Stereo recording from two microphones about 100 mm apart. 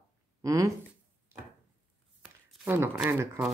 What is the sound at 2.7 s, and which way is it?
Speech, 25° right (ahead or behind).